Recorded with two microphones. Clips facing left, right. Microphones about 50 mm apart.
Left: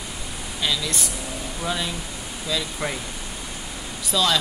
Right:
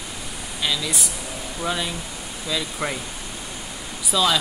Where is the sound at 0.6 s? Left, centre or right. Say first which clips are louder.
Even; centre.